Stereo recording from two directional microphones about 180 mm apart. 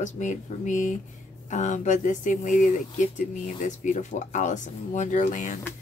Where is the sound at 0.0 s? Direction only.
40° left (ahead or behind).